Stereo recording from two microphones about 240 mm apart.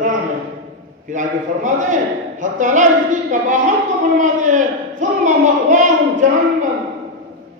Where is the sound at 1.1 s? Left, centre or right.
Right.